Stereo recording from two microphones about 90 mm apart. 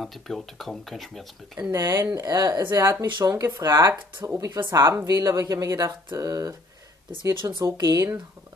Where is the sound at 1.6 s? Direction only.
40° right (ahead or behind).